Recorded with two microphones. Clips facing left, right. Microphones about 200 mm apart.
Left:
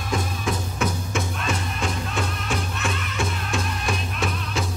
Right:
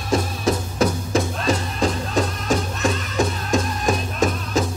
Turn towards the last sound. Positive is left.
turn(degrees=-40)  # may be behind; listen again after turning